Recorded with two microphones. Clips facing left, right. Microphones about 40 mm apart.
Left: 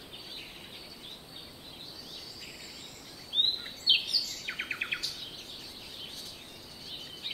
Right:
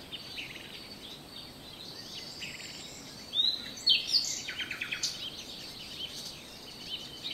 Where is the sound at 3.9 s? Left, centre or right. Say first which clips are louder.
Left 1 dB; left.